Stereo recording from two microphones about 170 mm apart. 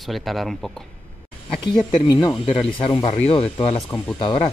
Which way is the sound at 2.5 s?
30° left (ahead or behind).